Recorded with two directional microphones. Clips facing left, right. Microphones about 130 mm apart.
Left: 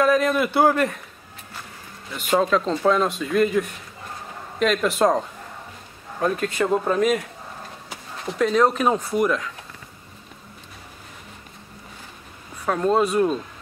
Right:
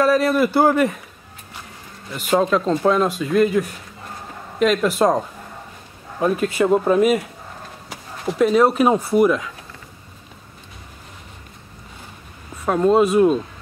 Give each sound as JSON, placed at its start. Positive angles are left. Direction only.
{"t": 0.0, "sound": "a man's voice", "side_deg": -5}
{"t": 2.1, "sound": "a man's voice", "side_deg": 0}
{"t": 8.3, "sound": "speech", "side_deg": -10}
{"t": 12.6, "sound": "speech", "side_deg": -10}